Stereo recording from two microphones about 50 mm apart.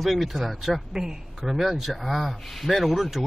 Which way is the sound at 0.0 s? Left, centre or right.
Centre.